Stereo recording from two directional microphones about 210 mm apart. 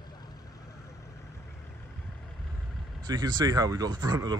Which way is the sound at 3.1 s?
20° right (ahead or behind).